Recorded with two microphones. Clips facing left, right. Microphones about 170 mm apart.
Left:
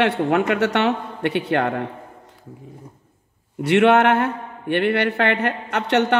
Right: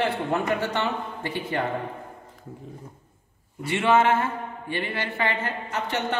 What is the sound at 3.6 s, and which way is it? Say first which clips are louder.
A man's voice: left 6 dB; 70° left (ahead or behind).